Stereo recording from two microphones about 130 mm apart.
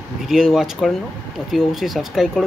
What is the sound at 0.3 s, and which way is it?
Speech, 5° right (ahead or behind).